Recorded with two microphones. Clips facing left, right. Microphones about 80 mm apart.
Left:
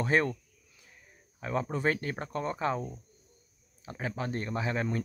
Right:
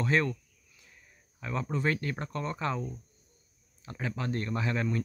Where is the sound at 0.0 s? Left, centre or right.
Centre.